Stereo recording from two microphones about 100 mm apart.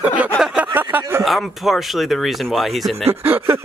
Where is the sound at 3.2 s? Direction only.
20° right (ahead or behind).